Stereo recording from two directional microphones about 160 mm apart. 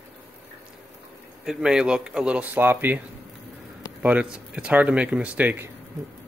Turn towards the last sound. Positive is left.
turn(degrees=-10)  # may be behind; listen again after turning